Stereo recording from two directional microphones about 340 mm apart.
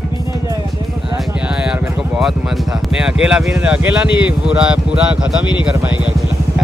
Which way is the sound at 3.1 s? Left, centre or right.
Centre.